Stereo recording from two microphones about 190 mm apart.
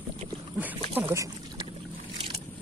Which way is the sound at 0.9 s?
10° right (ahead or behind).